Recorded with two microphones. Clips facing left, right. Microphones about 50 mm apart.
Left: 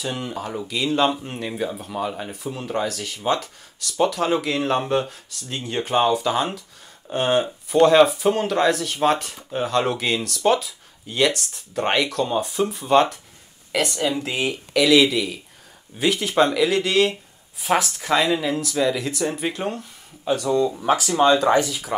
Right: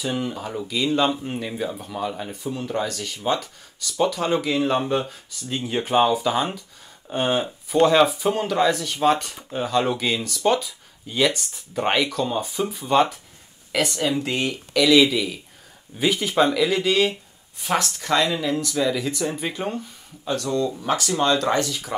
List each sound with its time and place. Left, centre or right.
0.0 s speech: centre